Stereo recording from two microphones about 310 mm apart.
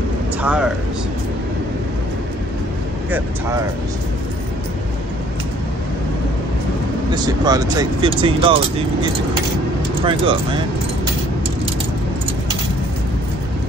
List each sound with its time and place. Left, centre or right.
0.4 s speech: centre
7.2 s speech: centre
10.0 s speech: centre